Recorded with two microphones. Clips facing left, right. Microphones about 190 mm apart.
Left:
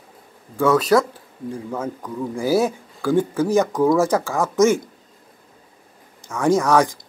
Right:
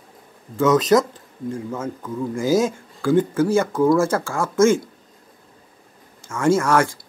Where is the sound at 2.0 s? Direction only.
10° left (ahead or behind).